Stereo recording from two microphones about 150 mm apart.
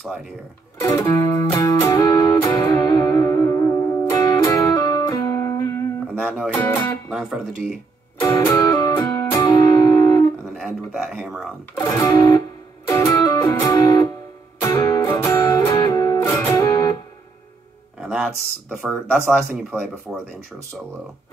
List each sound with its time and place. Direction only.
0.9 s music: 20° left (ahead or behind)
6.1 s music: 5° left (ahead or behind)
7.1 s guitar: centre (ahead or behind)
8.2 s music: 25° left (ahead or behind)
10.6 s speech: centre (ahead or behind)
11.8 s music: 20° left (ahead or behind)
18.0 s speech: centre (ahead or behind)
20.1 s speech: 5° right (ahead or behind)